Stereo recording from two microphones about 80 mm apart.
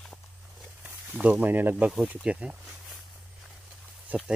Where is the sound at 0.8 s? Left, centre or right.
Centre.